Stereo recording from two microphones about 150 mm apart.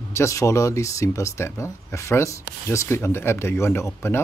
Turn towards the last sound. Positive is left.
turn(degrees=15)  # may be behind; listen again after turning